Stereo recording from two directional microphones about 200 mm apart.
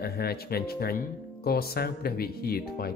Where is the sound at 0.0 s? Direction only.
50° left (ahead or behind).